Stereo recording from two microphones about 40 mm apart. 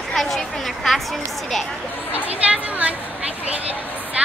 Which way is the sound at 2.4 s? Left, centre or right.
Right.